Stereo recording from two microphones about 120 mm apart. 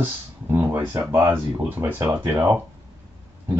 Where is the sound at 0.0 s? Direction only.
20° right (ahead or behind).